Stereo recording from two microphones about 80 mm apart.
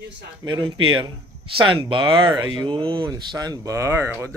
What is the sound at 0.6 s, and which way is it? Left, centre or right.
Speech, right.